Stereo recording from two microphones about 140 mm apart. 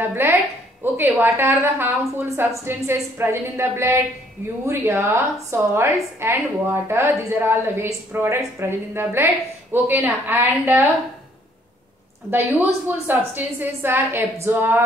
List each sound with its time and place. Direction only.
0.0 s a sound: 15° right (ahead or behind)
0.8 s a woman's voice: 15° right (ahead or behind)
12.3 s a woman's voice: 15° right (ahead or behind)